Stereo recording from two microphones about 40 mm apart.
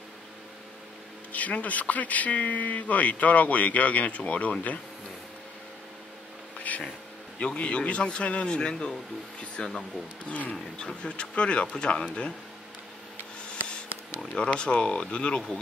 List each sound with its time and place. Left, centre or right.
1.3 s speech: left
6.7 s vehicle: left
7.3 s speech: left
10.2 s speech: left
14.3 s speech: left